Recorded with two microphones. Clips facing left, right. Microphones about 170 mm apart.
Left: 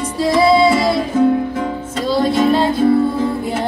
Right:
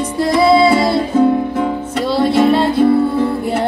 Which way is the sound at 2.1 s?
65° right (ahead or behind).